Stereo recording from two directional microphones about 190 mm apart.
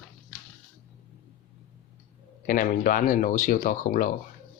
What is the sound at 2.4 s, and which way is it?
Speech, 45° left (ahead or behind).